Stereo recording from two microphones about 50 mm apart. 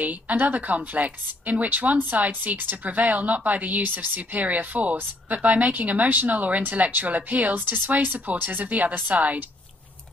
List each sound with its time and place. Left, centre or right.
0.0 s speech: right